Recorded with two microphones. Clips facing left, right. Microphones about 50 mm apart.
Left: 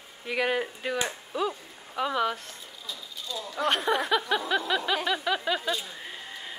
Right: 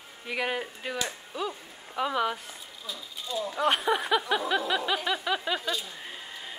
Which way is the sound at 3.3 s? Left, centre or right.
Right.